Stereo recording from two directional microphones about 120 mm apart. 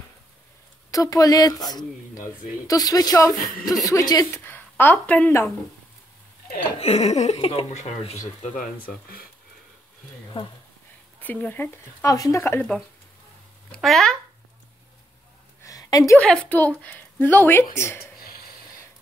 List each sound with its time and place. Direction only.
0.9 s speech: 30° left (ahead or behind)
4.5 s a woman's voice: 15° left (ahead or behind)
6.8 s speech: 60° left (ahead or behind)
10.3 s speech: 50° left (ahead or behind)
11.1 s speech: 15° left (ahead or behind)
13.7 s speech: centre (ahead or behind)
15.6 s a sound: 30° left (ahead or behind)
16.2 s speech: 10° left (ahead or behind)